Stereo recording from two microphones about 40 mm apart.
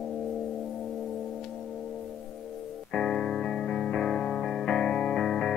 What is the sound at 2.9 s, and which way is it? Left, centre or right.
Music, left.